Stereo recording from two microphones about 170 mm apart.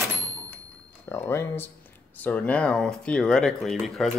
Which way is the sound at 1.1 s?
15° left (ahead or behind).